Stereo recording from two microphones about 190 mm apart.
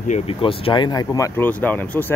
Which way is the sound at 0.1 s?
30° left (ahead or behind).